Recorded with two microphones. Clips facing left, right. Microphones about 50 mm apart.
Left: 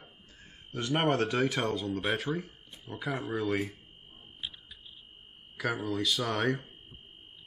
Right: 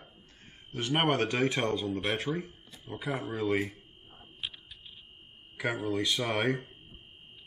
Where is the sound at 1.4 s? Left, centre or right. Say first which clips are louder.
Right 1 dB; centre.